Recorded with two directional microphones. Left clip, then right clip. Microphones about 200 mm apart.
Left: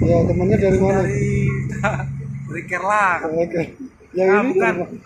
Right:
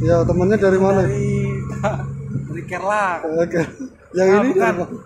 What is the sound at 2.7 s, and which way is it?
Speech, 30° right (ahead or behind).